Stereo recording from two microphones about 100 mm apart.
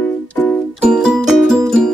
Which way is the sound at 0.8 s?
5° right (ahead or behind).